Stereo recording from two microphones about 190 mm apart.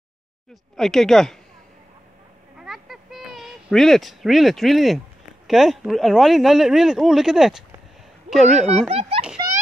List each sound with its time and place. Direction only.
0.7 s speech: centre (ahead or behind)
2.6 s a sound: centre (ahead or behind)
5.5 s speech: centre (ahead or behind)
8.6 s speech: 30° right (ahead or behind)